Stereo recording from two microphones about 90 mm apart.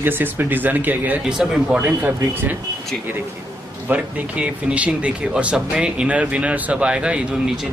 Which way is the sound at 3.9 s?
15° right (ahead or behind).